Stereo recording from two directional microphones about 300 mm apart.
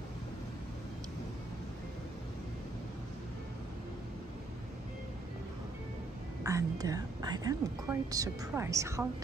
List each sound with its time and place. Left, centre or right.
6.4 s a woman's voice: centre